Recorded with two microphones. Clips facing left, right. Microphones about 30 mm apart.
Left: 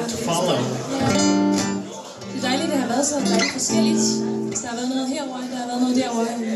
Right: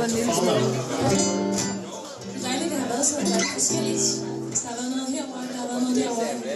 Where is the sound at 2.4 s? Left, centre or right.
Left.